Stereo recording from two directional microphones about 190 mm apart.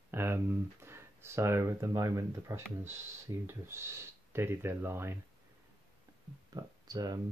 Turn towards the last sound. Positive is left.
turn(degrees=-20)  # may be behind; listen again after turning